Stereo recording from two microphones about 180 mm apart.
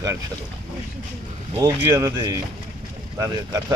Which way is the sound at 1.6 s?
20° right (ahead or behind).